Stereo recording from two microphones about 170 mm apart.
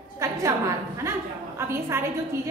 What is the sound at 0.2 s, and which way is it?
A woman's voice, 15° right (ahead or behind).